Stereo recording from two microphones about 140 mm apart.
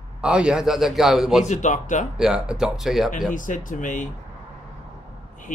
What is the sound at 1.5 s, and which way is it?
Speech, 60° left (ahead or behind).